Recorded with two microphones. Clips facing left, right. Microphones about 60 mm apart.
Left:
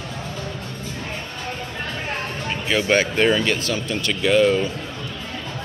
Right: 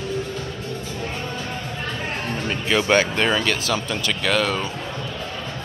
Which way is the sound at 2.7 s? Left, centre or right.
Centre.